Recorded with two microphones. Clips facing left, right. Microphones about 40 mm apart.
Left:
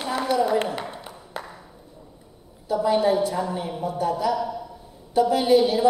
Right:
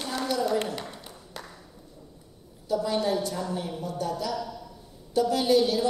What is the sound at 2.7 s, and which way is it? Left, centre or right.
A woman's voice, left.